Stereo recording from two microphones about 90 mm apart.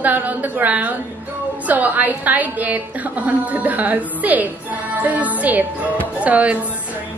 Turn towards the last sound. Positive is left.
turn(degrees=-15)  # may be behind; listen again after turning